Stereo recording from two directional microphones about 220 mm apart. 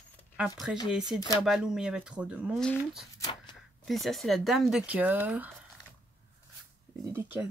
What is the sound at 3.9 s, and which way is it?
Speech, centre (ahead or behind).